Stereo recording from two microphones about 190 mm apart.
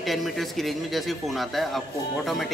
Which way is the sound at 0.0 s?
Centre (ahead or behind).